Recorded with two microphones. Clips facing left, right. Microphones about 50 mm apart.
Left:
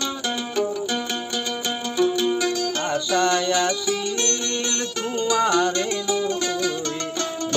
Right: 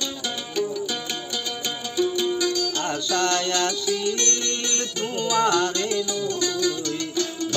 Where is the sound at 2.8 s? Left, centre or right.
Centre; by 6.7 s left.